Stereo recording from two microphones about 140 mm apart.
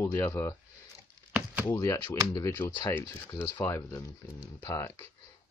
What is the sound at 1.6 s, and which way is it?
Speech, 20° left (ahead or behind).